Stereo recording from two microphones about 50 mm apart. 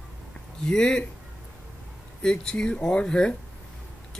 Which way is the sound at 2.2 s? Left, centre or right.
Centre.